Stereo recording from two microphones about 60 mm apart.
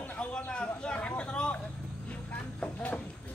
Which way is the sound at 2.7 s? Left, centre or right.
Left.